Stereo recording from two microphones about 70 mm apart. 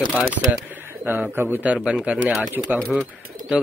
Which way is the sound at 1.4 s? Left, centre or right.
Right.